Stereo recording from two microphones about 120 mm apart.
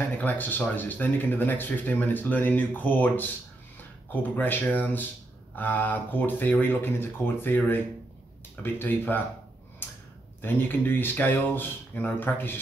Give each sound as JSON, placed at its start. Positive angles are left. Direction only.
{"t": 0.2, "sound": "speech", "side_deg": 15}
{"t": 9.8, "sound": "a sound", "side_deg": 20}
{"t": 10.4, "sound": "speech", "side_deg": 15}